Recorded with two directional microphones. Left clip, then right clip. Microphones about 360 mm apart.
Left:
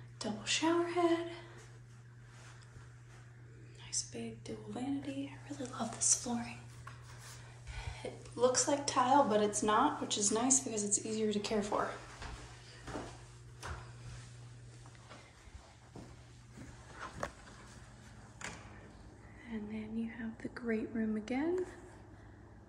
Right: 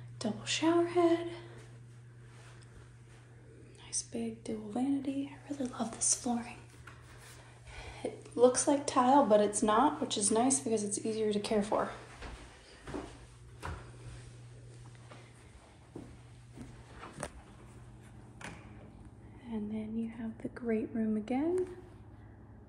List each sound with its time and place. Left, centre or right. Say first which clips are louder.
0.2 s speech: right 1 dB; centre
3.8 s speech: right 2 dB; centre
7.7 s a woman's voice: right 4 dB; centre
18.4 s a sound: left 1 dB; right
19.4 s whispering: right 4 dB; centre